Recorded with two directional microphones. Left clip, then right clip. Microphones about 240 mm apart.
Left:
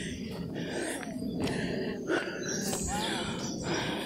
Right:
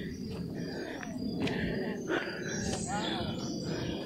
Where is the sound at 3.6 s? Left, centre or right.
Left.